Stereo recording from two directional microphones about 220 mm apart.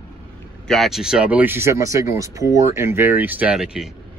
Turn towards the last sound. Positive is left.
turn(degrees=-5)  # may be behind; listen again after turning